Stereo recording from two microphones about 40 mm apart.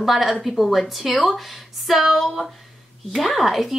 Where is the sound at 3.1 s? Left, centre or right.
Centre.